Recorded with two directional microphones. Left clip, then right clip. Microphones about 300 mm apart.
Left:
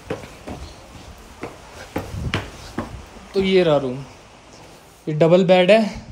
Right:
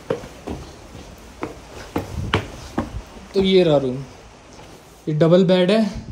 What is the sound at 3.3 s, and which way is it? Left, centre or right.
Speech, centre.